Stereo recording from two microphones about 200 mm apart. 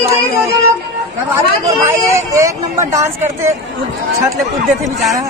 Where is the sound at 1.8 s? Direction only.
15° right (ahead or behind).